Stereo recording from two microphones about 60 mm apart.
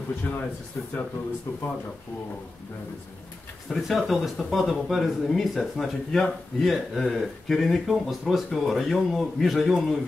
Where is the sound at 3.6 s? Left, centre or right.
Centre.